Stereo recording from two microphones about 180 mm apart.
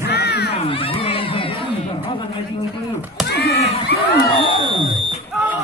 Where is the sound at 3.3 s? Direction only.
65° left (ahead or behind).